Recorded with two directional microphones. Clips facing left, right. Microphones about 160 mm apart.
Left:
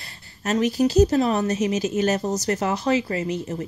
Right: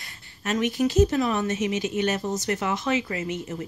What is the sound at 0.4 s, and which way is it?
Speech, 35° left (ahead or behind).